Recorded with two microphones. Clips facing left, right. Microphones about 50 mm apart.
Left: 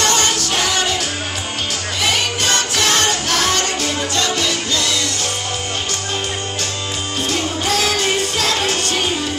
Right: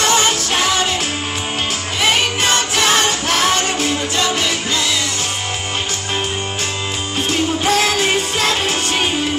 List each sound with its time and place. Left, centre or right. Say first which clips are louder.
0.0 s music: right 2 dB; centre
2.5 s music: right 1 dB; right
7.2 s music: right 4 dB; right